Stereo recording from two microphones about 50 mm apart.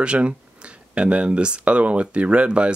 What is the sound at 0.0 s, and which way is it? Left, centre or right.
Speech, right.